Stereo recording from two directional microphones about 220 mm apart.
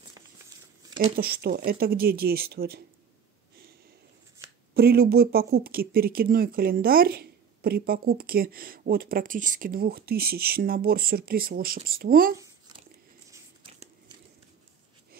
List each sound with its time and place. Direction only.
1.1 s speech: 45° right (ahead or behind)
4.7 s speech: 45° right (ahead or behind)
12.4 s chewing: 20° right (ahead or behind)